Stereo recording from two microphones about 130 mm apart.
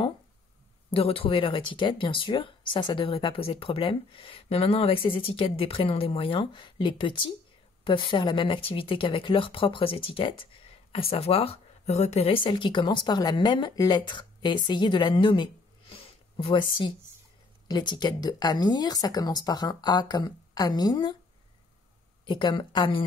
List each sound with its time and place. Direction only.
0.9 s speech: 45° left (ahead or behind)
22.2 s speech: 40° left (ahead or behind)